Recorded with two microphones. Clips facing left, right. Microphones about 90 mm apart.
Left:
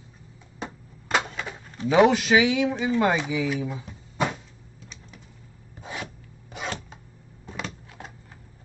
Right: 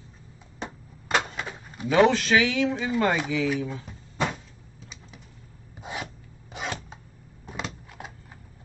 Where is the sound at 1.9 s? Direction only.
15° left (ahead or behind).